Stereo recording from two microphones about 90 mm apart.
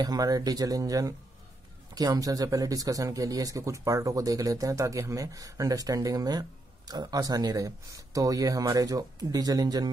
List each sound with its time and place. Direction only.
0.0 s speech: 45° right (ahead or behind)